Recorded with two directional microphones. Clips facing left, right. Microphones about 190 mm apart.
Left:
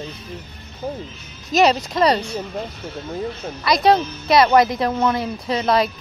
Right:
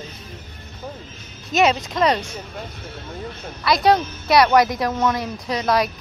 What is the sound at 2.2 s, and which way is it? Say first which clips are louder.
Speech: left 6 dB; 35° left (ahead or behind).